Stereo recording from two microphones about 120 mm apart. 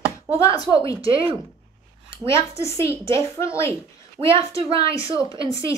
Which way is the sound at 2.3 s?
25° left (ahead or behind).